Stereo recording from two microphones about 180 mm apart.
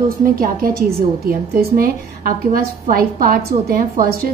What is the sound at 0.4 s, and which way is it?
A woman's voice, 55° right (ahead or behind).